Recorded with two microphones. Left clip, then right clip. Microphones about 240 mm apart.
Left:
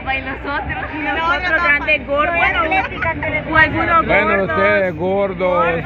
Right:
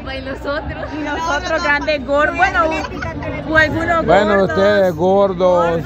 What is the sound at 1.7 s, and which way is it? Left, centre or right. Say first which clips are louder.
Speech: left 1 dB; right.